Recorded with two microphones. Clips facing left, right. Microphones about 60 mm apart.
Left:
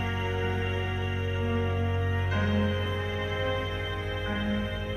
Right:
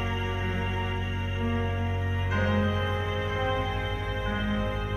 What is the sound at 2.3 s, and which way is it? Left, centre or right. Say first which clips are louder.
Music: right 2 dB; right.